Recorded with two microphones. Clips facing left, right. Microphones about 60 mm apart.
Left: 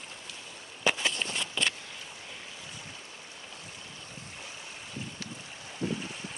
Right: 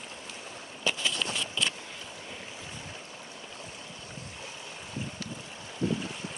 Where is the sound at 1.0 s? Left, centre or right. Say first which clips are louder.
Even; left.